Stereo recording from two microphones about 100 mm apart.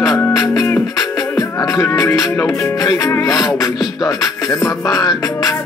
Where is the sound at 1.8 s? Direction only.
25° left (ahead or behind).